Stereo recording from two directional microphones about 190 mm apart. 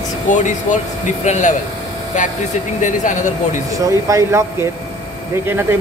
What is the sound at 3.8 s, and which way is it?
Speech, 15° right (ahead or behind).